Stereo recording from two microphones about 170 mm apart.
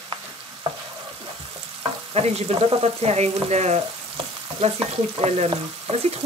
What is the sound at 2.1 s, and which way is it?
Frying, 40° right (ahead or behind).